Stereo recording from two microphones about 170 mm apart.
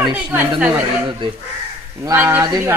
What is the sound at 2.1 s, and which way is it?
Speech, 15° right (ahead or behind).